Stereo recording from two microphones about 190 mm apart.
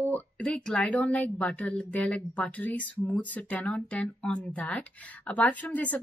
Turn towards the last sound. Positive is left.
turn(degrees=10)  # may be behind; listen again after turning